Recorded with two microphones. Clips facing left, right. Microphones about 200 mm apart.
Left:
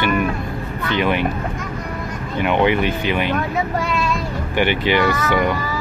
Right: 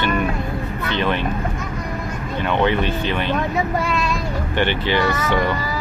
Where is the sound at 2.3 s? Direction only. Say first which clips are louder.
Left 2 dB; 15° left (ahead or behind).